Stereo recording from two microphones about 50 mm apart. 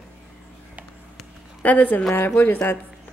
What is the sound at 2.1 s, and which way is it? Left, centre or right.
Speech, left.